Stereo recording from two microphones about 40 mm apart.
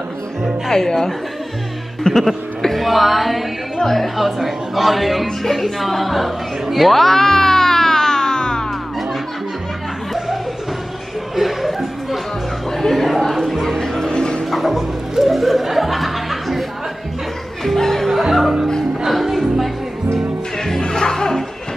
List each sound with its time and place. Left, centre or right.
0.7 s speech: centre
2.2 s speech: centre
10.1 s a sound: centre
11.3 s music: centre
12.7 s a sound: centre
13.7 s music: centre
14.4 s music: centre
17.6 s music: centre
18.2 s speech: centre
19.0 s music: centre
20.5 s music: centre